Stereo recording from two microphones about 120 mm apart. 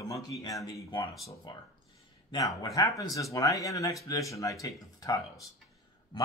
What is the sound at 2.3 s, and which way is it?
Speech, 30° left (ahead or behind).